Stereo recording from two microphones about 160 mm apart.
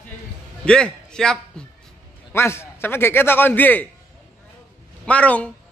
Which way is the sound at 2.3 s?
15° left (ahead or behind).